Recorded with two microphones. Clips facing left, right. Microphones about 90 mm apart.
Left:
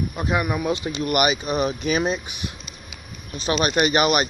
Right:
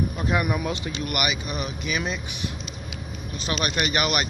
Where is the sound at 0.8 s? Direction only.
30° left (ahead or behind).